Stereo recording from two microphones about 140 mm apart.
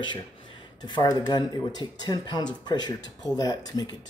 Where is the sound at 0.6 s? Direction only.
30° left (ahead or behind).